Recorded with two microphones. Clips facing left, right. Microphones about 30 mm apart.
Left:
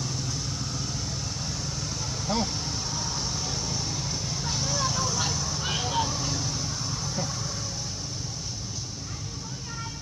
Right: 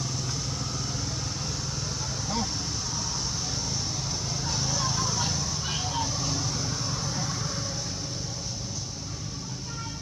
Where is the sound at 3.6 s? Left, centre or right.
Centre.